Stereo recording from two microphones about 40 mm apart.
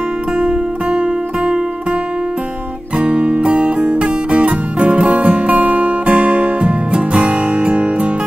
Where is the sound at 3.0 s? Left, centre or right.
Right.